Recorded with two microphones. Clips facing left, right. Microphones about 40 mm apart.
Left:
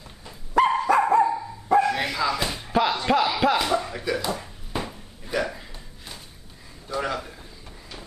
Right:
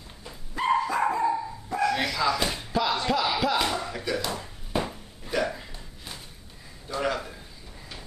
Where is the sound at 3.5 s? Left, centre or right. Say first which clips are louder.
Left 3 dB; centre.